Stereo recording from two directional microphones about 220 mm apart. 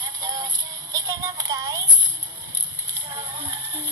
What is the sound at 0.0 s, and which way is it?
Synthetic singing, 20° right (ahead or behind).